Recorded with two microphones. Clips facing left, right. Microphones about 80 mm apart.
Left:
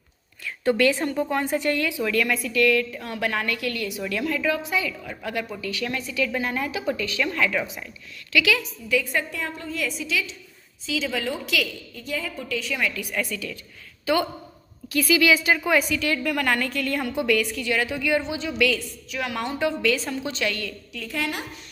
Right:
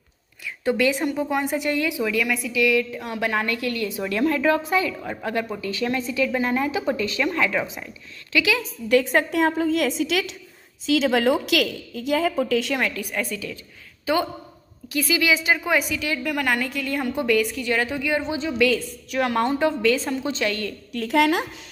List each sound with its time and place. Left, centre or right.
0.7 s a woman's voice: centre
3.0 s speech: right
8.8 s a woman's voice: right
10.9 s a woman's voice: right
12.7 s a woman's voice: right
13.1 s speech: right
14.9 s a woman's voice: right
17.1 s a woman's voice: right
19.0 s a woman's voice: right
20.9 s a woman's voice: right